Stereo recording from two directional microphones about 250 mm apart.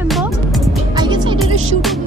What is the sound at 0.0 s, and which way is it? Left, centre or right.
Music, centre.